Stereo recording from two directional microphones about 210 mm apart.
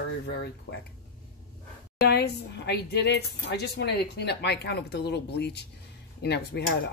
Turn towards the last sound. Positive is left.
turn(degrees=50)  # may be behind; listen again after turning